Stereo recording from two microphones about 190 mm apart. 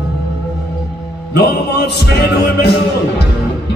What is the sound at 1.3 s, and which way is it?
Music, 60° left (ahead or behind).